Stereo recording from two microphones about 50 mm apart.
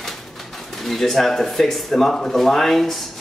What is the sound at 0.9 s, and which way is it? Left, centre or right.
Speech, centre.